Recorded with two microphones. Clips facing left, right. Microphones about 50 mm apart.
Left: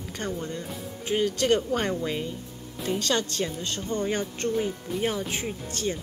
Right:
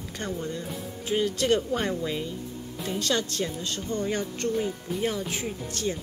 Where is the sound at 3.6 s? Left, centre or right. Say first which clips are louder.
Left 1 dB; left.